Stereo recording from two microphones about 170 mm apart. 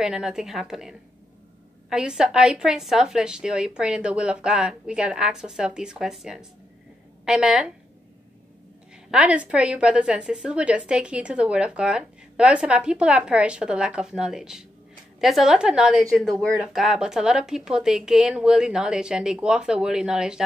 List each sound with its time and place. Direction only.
0.0 s a woman's voice: 5° right (ahead or behind)
9.1 s a woman's voice: 5° right (ahead or behind)